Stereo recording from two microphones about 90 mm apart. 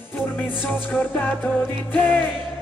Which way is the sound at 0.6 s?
20° left (ahead or behind).